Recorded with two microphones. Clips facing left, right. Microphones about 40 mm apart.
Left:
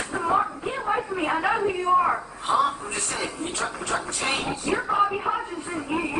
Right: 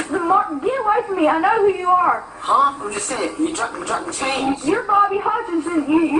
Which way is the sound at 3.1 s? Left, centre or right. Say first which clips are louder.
Right 12 dB; centre.